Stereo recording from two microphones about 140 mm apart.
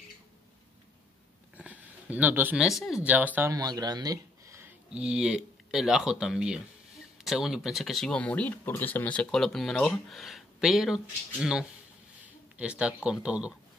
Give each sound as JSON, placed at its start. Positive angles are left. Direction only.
{"t": 1.6, "sound": "a sound", "side_deg": -10}
{"t": 2.6, "sound": "speech", "side_deg": 0}
{"t": 3.5, "sound": "speech", "side_deg": -25}
{"t": 4.9, "sound": "speech", "side_deg": -5}
{"t": 12.2, "sound": "speech", "side_deg": -10}